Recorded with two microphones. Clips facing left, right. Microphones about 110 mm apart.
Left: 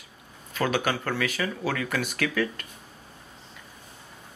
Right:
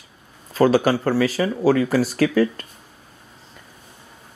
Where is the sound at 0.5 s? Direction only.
35° right (ahead or behind).